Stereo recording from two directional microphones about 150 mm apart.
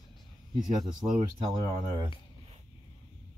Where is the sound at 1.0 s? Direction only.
15° right (ahead or behind).